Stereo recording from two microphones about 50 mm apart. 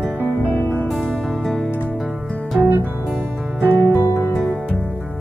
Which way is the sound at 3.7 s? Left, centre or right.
Left.